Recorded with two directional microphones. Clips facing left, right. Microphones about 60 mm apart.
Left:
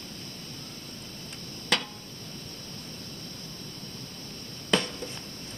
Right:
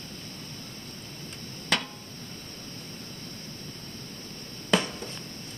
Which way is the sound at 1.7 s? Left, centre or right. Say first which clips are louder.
Even; centre.